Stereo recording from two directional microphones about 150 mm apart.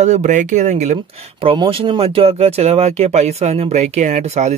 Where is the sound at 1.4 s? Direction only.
35° right (ahead or behind); by 4.5 s 50° right (ahead or behind).